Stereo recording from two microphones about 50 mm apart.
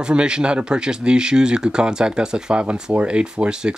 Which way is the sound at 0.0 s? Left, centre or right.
Centre.